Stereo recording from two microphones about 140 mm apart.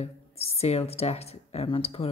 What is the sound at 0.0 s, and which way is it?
Speech, 45° left (ahead or behind).